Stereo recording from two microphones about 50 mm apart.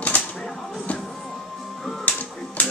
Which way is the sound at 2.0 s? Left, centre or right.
Left.